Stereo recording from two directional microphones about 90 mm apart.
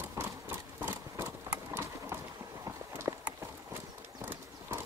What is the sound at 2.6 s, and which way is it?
Run, 30° right (ahead or behind).